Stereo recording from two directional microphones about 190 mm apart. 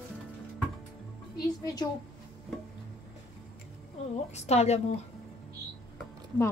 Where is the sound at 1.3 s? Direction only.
20° left (ahead or behind).